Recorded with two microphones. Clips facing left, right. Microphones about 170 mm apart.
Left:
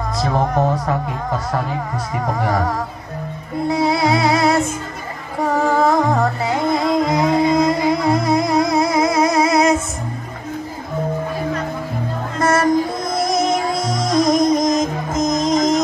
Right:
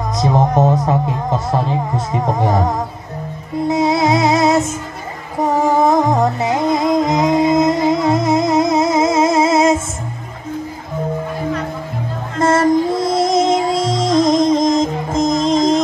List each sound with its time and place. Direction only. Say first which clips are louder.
0.2 s music: right 4 dB; 20° right (ahead or behind)
12.4 s music: right 3 dB; 25° right (ahead or behind)